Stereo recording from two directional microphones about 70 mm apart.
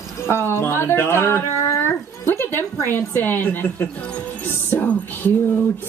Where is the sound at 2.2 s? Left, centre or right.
Left.